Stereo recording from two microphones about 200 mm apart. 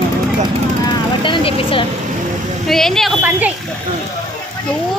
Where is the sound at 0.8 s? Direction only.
25° left (ahead or behind).